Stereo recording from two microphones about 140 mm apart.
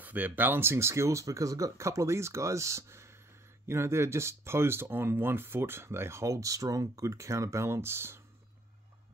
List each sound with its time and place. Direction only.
0.0 s speech: 10° right (ahead or behind)